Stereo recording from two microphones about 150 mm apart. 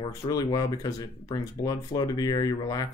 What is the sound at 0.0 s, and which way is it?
Speech, 20° left (ahead or behind).